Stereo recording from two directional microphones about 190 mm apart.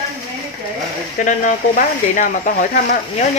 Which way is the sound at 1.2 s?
45° left (ahead or behind).